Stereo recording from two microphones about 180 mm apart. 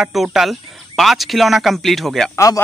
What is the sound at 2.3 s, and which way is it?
Speech, 20° left (ahead or behind).